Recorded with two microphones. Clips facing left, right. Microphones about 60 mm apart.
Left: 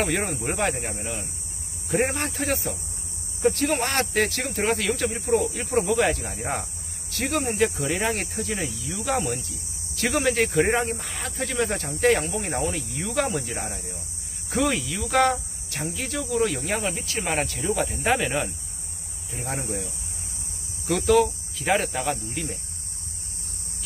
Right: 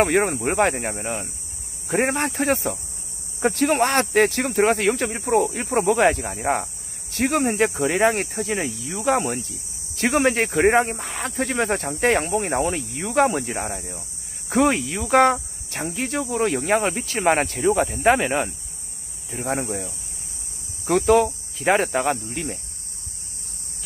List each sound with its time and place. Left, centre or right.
0.0 s speech: right
19.3 s speech: right